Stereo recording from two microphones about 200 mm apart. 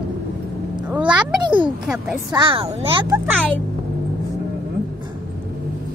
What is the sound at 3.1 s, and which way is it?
Speech, 10° right (ahead or behind).